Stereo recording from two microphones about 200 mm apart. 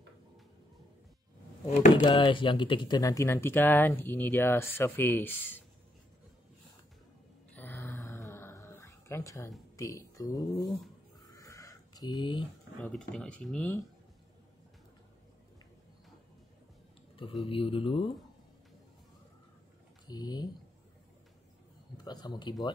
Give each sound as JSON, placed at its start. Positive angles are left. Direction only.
{"t": 2.0, "sound": "speech", "side_deg": 25}
{"t": 7.5, "sound": "growling", "side_deg": 10}
{"t": 9.8, "sound": "speech", "side_deg": 15}
{"t": 11.3, "sound": "a sound", "side_deg": 15}
{"t": 12.8, "sound": "speech", "side_deg": 5}
{"t": 17.5, "sound": "speech", "side_deg": 25}
{"t": 20.1, "sound": "speech", "side_deg": 20}
{"t": 21.9, "sound": "speech", "side_deg": 20}